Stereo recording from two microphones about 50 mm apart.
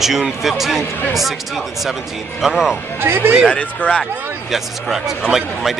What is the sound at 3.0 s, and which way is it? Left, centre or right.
Speech, right.